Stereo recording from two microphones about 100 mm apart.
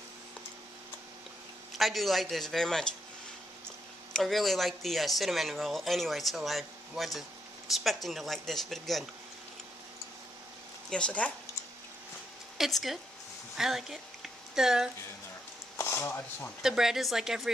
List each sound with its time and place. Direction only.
1.7 s speech: centre (ahead or behind)
4.1 s speech: centre (ahead or behind)
10.9 s speech: 10° left (ahead or behind)
12.5 s a woman's voice: centre (ahead or behind)
15.8 s speech: 25° left (ahead or behind)
16.6 s speech: 5° right (ahead or behind)